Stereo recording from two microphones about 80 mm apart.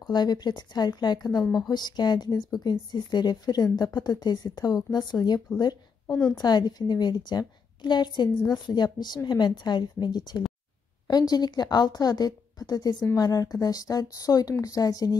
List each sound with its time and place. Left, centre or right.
0.0 s a woman's voice: left
6.0 s a woman's voice: centre
6.3 s a woman's voice: left